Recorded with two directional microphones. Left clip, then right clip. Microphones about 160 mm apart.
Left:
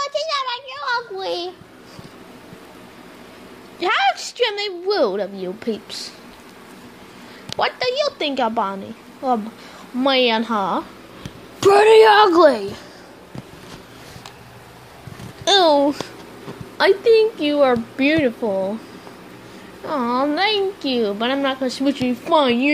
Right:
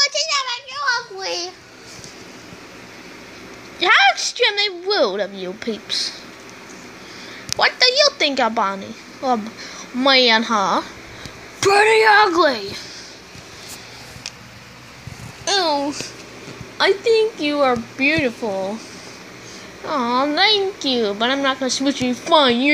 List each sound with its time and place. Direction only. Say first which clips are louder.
0.3 s a sound: right 1 dB; 45° left (ahead or behind)
3.8 s a woman's voice: right 5 dB; 5° left (ahead or behind)
7.5 s a woman's voice: right 5 dB; 10° left (ahead or behind)
11.7 s speech: left 2 dB; 40° left (ahead or behind)
15.4 s a child's voice: left 5 dB; 40° left (ahead or behind)
16.7 s a woman's voice: left 2 dB; 25° left (ahead or behind)
17.4 s speech: left 1 dB; 15° left (ahead or behind)
17.9 s speech: even; 40° left (ahead or behind)
18.2 s speech: left 2 dB; 15° left (ahead or behind)
19.8 s a woman's voice: right 1 dB; 5° left (ahead or behind)